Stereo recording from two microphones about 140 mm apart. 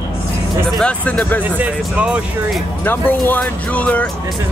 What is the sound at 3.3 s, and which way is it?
Speech, 10° left (ahead or behind).